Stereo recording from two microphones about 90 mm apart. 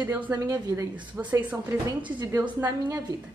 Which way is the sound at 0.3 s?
35° right (ahead or behind).